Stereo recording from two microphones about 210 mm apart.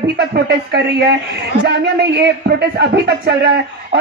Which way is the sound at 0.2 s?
50° right (ahead or behind).